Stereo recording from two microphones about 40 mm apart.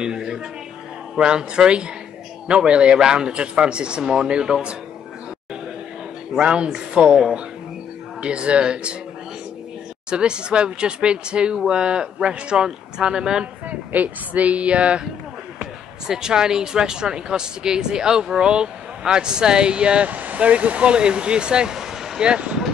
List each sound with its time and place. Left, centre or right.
0.0 s a sound: centre
1.1 s speech: right
6.3 s speech: right
10.0 s speech: right
13.7 s speech: right
15.6 s speech: centre
20.1 s speech: right; by 22.2 s centre
22.2 s speech: right